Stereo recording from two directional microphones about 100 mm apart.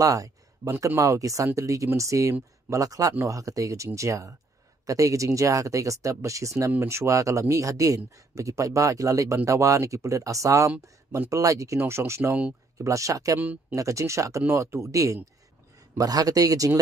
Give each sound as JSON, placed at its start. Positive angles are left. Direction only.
{"t": 0.0, "sound": "speech", "side_deg": -35}